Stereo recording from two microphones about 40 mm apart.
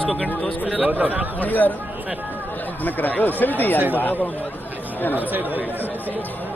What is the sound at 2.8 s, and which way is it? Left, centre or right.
Speech, left.